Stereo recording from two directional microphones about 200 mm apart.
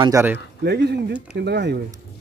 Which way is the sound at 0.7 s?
60° right (ahead or behind).